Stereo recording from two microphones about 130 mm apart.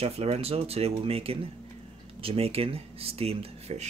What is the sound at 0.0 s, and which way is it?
Speech, 50° right (ahead or behind).